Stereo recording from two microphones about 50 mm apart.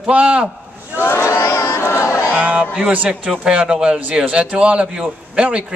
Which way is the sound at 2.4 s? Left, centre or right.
Right.